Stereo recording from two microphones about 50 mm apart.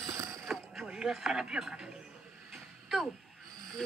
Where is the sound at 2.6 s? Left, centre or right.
Centre.